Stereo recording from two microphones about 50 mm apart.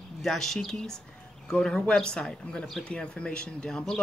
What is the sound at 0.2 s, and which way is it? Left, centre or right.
Speech, centre.